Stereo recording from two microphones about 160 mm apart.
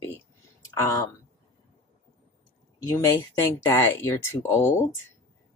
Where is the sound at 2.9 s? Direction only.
15° left (ahead or behind).